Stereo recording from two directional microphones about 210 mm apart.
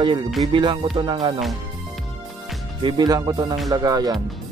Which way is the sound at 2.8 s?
20° right (ahead or behind).